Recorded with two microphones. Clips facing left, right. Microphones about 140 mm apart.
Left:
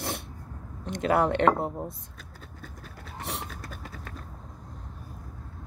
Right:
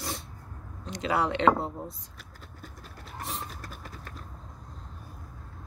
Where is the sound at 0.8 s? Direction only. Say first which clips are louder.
Left 4 dB; 55° left (ahead or behind).